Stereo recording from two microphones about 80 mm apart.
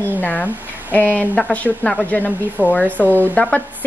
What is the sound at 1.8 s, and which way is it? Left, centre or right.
Speech, centre.